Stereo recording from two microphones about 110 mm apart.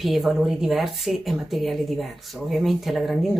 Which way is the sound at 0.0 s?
Centre (ahead or behind).